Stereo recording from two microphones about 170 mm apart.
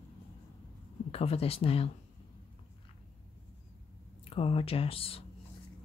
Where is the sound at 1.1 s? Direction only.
35° left (ahead or behind).